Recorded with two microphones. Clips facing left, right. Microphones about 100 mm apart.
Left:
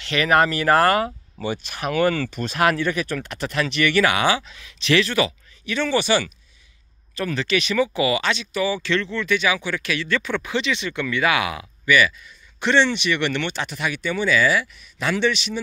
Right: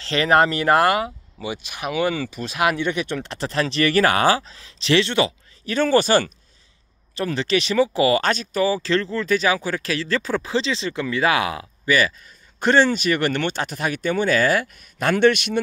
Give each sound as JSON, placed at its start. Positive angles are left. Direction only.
{"t": 0.0, "sound": "speech", "side_deg": -30}
{"t": 5.7, "sound": "speech", "side_deg": -45}
{"t": 7.2, "sound": "speech", "side_deg": -30}